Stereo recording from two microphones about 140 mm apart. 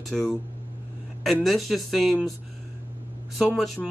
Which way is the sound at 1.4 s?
Centre (ahead or behind).